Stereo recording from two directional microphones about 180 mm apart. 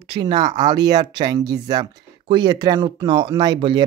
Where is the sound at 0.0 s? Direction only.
30° right (ahead or behind).